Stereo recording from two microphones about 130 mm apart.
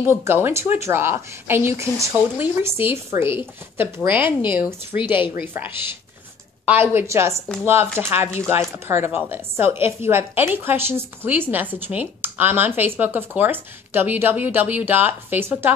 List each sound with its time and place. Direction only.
0.0 s a woman's voice: 20° right (ahead or behind)